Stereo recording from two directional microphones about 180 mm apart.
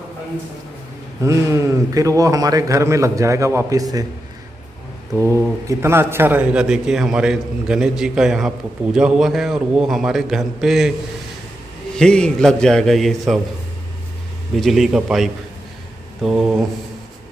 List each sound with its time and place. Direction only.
1.2 s a man's voice: 15° right (ahead or behind)
5.1 s a man's voice: 15° right (ahead or behind)
12.0 s a man's voice: 5° left (ahead or behind)
14.5 s a man's voice: centre (ahead or behind)